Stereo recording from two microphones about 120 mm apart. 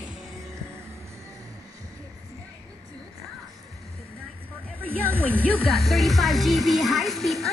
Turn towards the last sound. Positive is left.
turn(degrees=0)  # may be behind; listen again after turning